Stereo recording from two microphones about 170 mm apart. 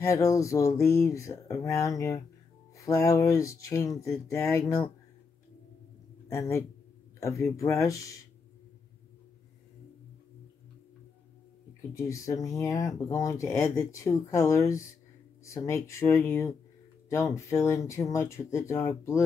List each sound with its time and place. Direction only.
0.0 s speech: 20° left (ahead or behind)
6.2 s a man's voice: 20° left (ahead or behind)
11.9 s speech: 20° left (ahead or behind)